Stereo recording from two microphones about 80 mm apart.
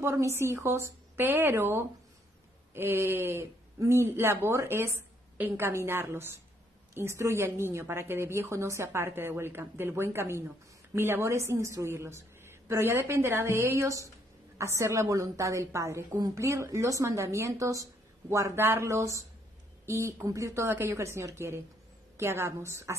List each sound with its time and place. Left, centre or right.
0.0 s a woman's voice: right